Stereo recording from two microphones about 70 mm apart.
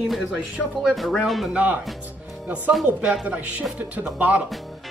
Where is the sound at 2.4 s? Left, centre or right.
Right.